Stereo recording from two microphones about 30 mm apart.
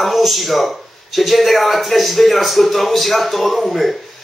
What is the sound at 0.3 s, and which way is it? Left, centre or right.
A man's voice, centre.